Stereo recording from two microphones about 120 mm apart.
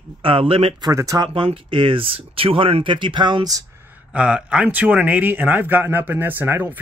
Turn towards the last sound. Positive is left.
turn(degrees=-15)  # may be behind; listen again after turning